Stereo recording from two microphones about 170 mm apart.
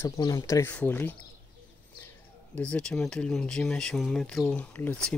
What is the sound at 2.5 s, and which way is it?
Speech, 5° left (ahead or behind).